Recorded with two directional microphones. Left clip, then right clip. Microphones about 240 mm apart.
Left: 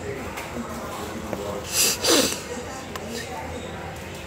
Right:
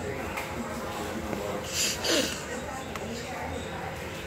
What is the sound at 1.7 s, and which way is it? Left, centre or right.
Snort, left.